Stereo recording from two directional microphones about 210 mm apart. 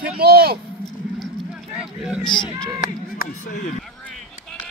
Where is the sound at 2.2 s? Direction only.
20° left (ahead or behind).